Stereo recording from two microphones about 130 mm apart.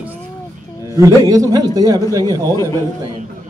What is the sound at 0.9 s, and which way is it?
Speech, 25° right (ahead or behind).